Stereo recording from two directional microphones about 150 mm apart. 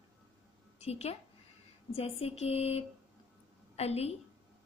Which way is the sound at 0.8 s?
45° left (ahead or behind).